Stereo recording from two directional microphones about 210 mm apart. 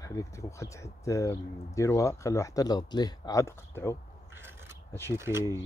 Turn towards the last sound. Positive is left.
turn(degrees=-10)  # may be behind; listen again after turning